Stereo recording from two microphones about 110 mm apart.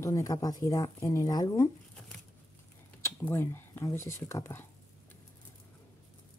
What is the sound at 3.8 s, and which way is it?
Speech, 25° left (ahead or behind).